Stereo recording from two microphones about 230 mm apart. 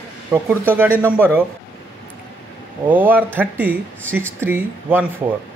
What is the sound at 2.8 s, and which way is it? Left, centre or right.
Speech, centre.